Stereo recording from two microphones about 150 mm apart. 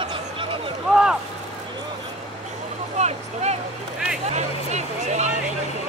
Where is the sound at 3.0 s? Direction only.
45° right (ahead or behind).